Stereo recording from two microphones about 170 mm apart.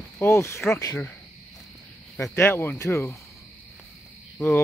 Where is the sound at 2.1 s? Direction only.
15° left (ahead or behind).